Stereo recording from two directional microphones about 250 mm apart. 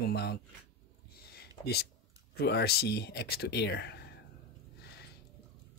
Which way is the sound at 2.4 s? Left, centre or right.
Left.